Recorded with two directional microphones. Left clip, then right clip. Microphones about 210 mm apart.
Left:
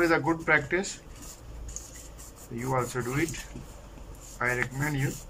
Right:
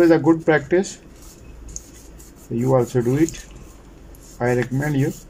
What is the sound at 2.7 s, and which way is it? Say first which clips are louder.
Speech: right 11 dB; 35° right (ahead or behind).